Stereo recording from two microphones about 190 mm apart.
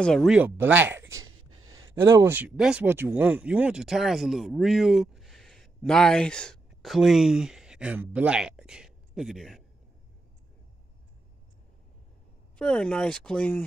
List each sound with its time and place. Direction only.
0.0 s speech: 5° left (ahead or behind)
1.0 s a sound: 90° right
2.0 s speech: 15° right (ahead or behind)
12.5 s speech: 5° left (ahead or behind)